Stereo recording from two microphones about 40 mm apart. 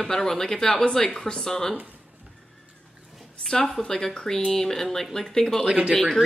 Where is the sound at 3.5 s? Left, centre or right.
Centre.